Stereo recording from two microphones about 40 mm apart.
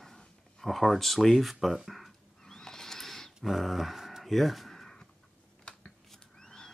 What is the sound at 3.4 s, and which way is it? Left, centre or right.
Speech, centre.